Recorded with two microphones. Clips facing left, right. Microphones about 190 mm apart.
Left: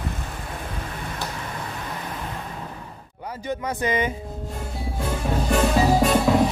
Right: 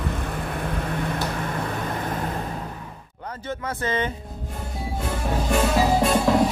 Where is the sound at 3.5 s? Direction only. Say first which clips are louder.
Left 3 dB; 15° left (ahead or behind).